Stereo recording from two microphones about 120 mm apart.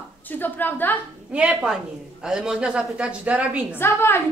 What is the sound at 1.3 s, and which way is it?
A woman's voice, 10° right (ahead or behind).